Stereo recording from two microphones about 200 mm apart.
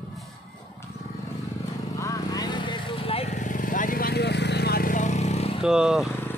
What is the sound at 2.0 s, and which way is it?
Vehicle, 15° left (ahead or behind).